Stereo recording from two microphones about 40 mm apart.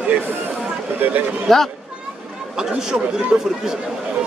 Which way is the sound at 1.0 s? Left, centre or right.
Right.